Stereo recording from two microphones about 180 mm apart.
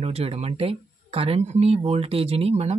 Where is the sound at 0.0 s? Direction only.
35° right (ahead or behind).